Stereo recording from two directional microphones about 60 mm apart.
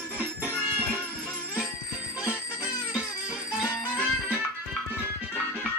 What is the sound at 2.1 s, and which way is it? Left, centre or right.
Music, right.